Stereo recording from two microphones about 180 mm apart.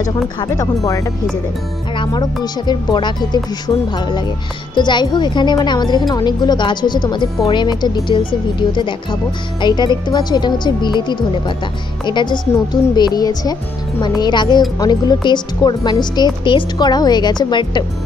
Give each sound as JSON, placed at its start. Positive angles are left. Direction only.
{"t": 0.4, "sound": "speech", "side_deg": 20}
{"t": 2.4, "sound": "speech", "side_deg": 25}